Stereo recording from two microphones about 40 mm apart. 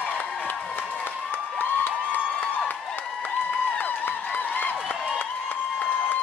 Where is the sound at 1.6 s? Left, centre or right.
Left.